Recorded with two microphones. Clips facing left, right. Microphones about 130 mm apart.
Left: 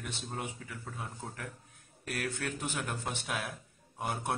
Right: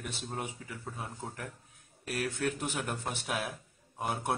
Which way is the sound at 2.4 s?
10° right (ahead or behind).